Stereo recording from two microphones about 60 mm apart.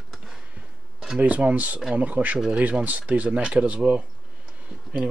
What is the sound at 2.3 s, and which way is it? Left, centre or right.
Speech, centre.